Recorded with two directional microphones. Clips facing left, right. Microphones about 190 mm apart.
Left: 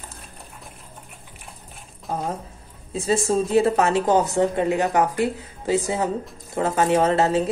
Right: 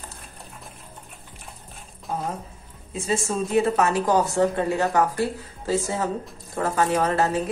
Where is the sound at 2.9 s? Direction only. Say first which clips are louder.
Left 4 dB; 35° left (ahead or behind).